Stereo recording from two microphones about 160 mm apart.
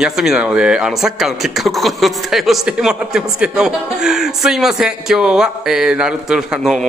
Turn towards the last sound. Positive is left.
turn(degrees=-5)  # may be behind; listen again after turning